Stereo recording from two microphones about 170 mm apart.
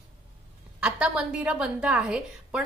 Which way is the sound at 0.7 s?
5° right (ahead or behind).